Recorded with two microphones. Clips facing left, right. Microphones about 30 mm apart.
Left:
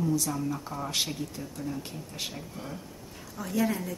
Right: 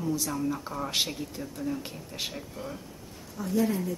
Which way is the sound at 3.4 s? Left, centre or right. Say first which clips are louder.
Right 3 dB; left.